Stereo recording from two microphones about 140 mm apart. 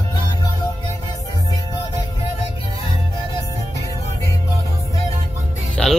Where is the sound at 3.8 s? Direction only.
25° left (ahead or behind).